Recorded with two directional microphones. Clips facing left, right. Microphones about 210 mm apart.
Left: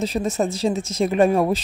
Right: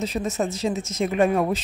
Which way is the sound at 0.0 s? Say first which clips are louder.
Left 3 dB; 35° left (ahead or behind).